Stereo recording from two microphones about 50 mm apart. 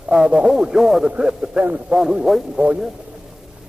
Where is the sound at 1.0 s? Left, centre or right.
Centre.